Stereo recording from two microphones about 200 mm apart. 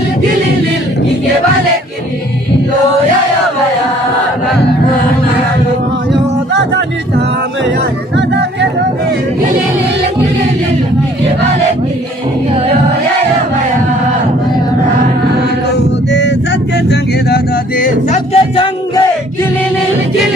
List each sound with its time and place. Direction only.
6.5 s music: 60° right (ahead or behind)
16.1 s vehicle: 60° left (ahead or behind)
16.9 s music: 50° left (ahead or behind)
18.3 s a sound: 25° left (ahead or behind)